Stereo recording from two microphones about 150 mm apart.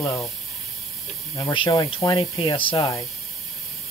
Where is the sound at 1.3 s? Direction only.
30° left (ahead or behind).